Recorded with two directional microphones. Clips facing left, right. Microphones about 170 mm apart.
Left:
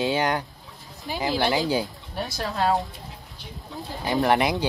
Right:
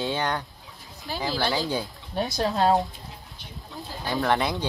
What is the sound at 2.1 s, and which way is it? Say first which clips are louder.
Speech: right 4 dB; 20° right (ahead or behind).